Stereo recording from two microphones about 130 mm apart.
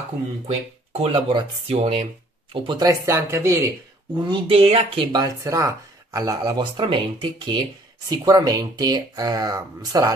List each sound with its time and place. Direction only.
0.9 s speech: 45° right (ahead or behind)
2.9 s speech: 25° right (ahead or behind)
4.1 s speech: 40° right (ahead or behind)
5.2 s speech: 25° right (ahead or behind)